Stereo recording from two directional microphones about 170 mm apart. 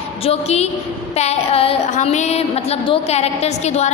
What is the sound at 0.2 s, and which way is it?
A woman's voice, 35° left (ahead or behind).